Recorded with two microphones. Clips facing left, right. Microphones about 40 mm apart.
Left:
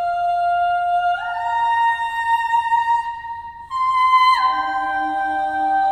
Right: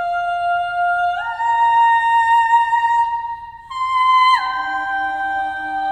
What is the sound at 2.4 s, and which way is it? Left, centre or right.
Music, right.